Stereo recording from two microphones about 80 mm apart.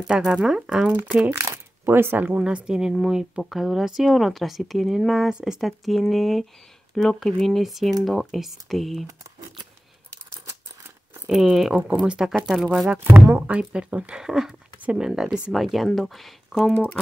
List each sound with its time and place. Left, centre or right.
0.0 s speech: centre
1.4 s a sound: right
2.2 s a woman's voice: centre
11.2 s a woman's voice: centre
12.9 s speech: right
15.5 s a woman's voice: centre